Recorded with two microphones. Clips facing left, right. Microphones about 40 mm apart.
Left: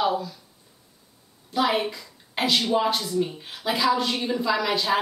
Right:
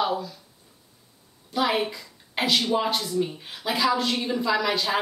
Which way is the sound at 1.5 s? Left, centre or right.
Centre.